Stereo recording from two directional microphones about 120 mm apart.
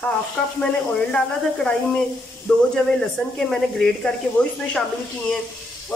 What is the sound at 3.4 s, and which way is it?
Speech, 5° left (ahead or behind).